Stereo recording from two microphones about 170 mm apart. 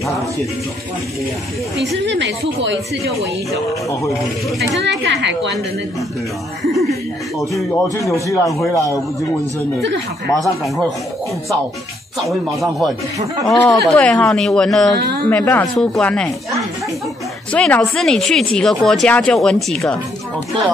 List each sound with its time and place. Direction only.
2.0 s a woman's voice: 90° right
4.7 s a woman's voice: 90° right
6.6 s speech: centre (ahead or behind)
8.3 s speech: 20° left (ahead or behind)
12.3 s speech: centre (ahead or behind)